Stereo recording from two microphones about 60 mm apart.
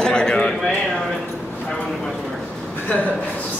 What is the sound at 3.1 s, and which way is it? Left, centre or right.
Speech, left.